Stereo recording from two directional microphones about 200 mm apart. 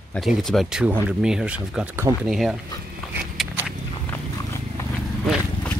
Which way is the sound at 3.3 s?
5° right (ahead or behind).